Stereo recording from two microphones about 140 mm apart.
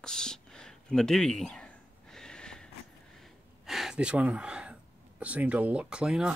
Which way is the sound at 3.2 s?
Centre (ahead or behind).